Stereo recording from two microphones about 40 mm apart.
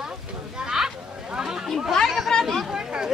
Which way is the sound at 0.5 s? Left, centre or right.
Centre.